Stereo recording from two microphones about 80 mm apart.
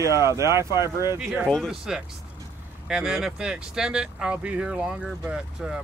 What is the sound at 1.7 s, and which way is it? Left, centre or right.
Speech, centre.